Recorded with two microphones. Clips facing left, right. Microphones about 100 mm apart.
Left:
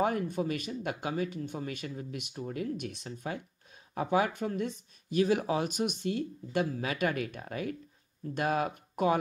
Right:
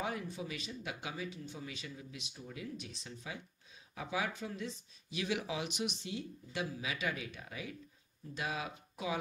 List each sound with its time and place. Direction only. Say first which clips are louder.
0.0 s speech: left 10 dB; 50° left (ahead or behind)